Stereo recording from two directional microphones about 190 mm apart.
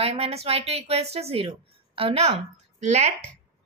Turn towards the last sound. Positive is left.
turn(degrees=-40)  # may be behind; listen again after turning